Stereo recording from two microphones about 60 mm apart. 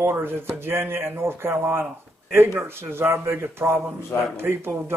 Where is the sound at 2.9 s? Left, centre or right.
Right.